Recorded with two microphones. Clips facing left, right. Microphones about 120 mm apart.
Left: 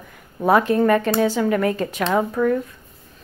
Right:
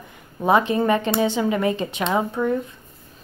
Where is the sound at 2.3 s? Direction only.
20° right (ahead or behind).